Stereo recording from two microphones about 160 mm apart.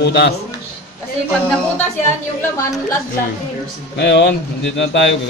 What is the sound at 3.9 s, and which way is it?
Speech, 90° left.